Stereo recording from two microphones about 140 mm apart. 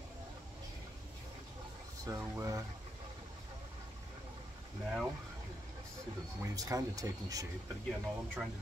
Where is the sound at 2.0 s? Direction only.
20° right (ahead or behind).